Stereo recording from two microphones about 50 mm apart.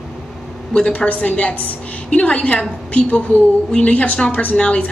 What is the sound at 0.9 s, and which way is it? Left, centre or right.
A woman's voice, left.